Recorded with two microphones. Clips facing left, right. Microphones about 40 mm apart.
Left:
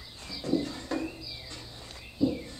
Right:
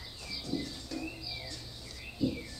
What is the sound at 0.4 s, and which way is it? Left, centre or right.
Bird, left.